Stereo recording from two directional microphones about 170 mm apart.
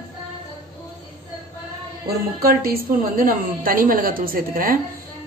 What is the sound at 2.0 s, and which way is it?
A woman's voice, 60° right (ahead or behind).